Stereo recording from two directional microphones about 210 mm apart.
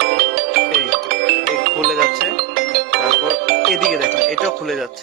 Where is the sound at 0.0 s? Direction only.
50° right (ahead or behind).